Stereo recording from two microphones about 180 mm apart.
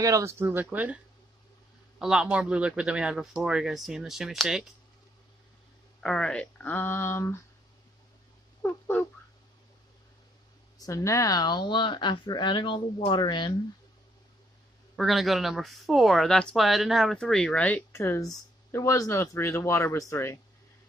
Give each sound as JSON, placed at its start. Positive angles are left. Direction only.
{"t": 0.0, "sound": "speech", "side_deg": -15}
{"t": 2.0, "sound": "speech", "side_deg": -5}
{"t": 6.0, "sound": "speech", "side_deg": 5}
{"t": 8.6, "sound": "a sound", "side_deg": 10}
{"t": 10.8, "sound": "speech", "side_deg": 15}
{"t": 15.0, "sound": "speech", "side_deg": 0}